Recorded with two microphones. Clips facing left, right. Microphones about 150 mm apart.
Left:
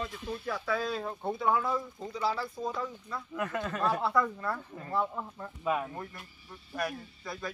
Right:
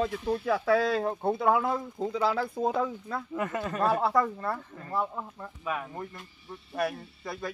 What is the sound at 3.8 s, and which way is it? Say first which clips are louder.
Speech: right 5 dB; 50° right (ahead or behind).